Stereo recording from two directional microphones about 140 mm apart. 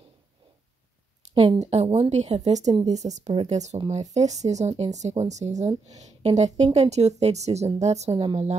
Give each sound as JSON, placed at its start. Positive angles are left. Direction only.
{"t": 1.3, "sound": "speech", "side_deg": -35}
{"t": 1.6, "sound": "speech", "side_deg": -50}